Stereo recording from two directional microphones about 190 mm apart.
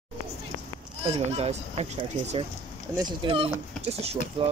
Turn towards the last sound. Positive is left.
turn(degrees=-30)  # may be behind; listen again after turning